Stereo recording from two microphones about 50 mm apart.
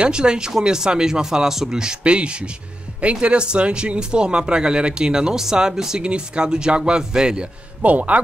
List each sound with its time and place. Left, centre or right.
0.0 s speech: centre
7.8 s speech: right